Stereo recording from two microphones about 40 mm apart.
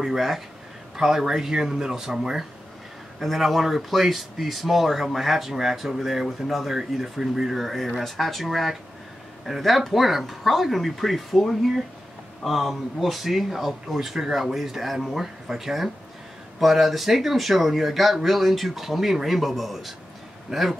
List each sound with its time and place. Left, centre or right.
0.0 s speech: centre